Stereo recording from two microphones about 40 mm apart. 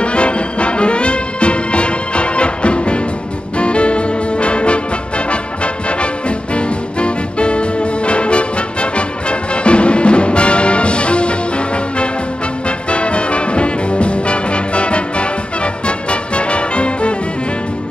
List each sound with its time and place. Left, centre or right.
0.0 s music: left